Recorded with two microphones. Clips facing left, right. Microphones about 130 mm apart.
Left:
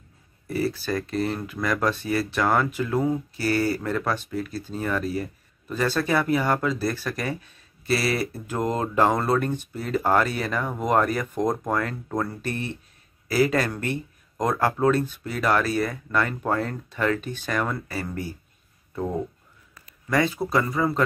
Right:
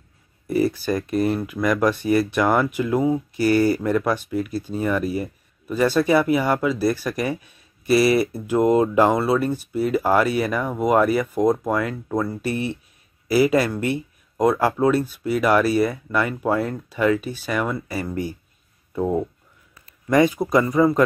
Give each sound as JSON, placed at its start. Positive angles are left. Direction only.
{"t": 0.5, "sound": "speech", "side_deg": -15}
{"t": 20.1, "sound": "speech", "side_deg": -15}